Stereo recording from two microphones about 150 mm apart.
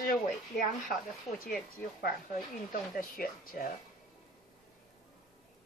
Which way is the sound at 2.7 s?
70° left (ahead or behind).